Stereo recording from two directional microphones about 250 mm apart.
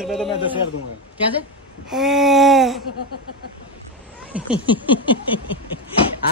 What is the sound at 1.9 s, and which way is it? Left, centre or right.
Speech, centre.